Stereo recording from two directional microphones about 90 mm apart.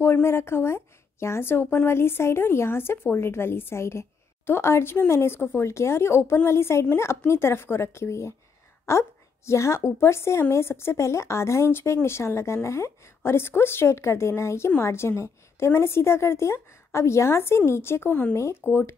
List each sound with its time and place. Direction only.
0.0 s a woman's voice: 25° left (ahead or behind)
8.8 s a sound: 30° left (ahead or behind)
9.8 s a woman's voice: 30° left (ahead or behind)